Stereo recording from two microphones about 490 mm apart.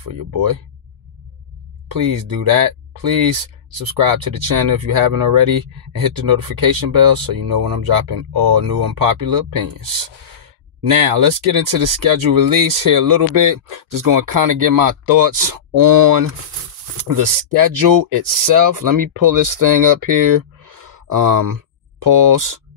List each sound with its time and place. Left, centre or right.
0.0 s speech: right
2.2 s speech: right
4.1 s speech: right
10.9 s speech: right